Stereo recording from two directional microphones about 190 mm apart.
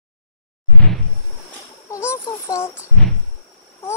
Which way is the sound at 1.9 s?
15° left (ahead or behind).